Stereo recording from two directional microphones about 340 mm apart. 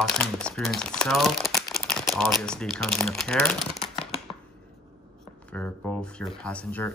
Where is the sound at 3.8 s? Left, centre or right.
Centre.